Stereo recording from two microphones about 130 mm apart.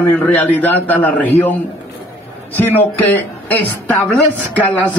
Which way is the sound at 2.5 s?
15° left (ahead or behind).